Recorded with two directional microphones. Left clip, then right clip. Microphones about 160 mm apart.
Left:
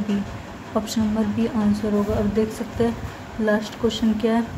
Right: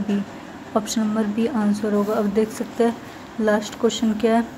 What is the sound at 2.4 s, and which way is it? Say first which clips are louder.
Speech: right 2 dB; 20° right (ahead or behind).